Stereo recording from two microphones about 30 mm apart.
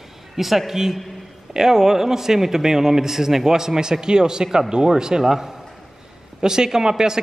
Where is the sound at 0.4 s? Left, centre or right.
Centre.